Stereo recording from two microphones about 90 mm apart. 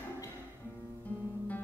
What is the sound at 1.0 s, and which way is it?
Guitar, 20° left (ahead or behind).